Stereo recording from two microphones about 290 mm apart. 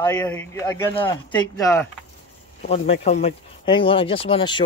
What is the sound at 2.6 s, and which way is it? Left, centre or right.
Speech, left.